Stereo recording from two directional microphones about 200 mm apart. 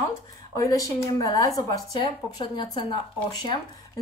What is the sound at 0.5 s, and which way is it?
A woman's voice, 15° left (ahead or behind).